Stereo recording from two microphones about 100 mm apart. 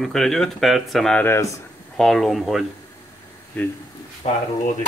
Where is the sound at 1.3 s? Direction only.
30° left (ahead or behind).